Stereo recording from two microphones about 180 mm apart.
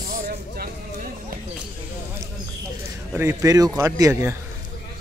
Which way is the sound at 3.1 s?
15° right (ahead or behind).